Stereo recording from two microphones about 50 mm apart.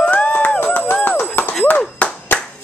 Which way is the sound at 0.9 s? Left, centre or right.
Left.